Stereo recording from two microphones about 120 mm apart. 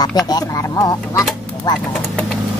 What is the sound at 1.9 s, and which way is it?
Speech, 5° left (ahead or behind).